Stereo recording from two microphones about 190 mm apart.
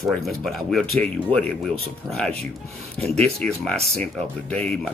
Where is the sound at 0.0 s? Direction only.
Centre (ahead or behind).